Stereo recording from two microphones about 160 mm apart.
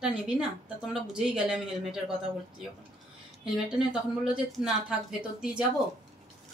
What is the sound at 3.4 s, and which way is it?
Speech, 5° right (ahead or behind).